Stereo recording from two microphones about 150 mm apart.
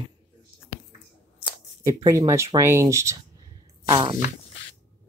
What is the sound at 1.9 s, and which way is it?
Speech, 25° right (ahead or behind).